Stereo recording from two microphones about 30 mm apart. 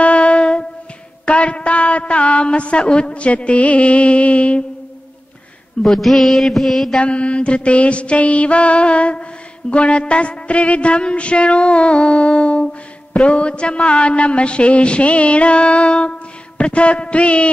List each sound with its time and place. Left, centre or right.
0.0 s music: left
1.2 s a woman's voice: left
5.9 s mantra: centre
7.0 s a woman's voice: left